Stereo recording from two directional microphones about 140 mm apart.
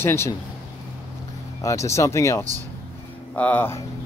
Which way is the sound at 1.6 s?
20° left (ahead or behind).